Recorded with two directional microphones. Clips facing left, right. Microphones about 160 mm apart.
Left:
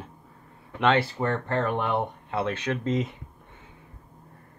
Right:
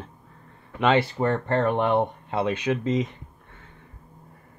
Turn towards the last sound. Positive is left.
turn(degrees=0)  # may be behind; listen again after turning